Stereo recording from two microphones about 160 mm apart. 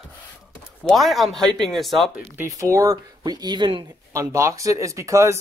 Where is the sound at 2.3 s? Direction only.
15° right (ahead or behind).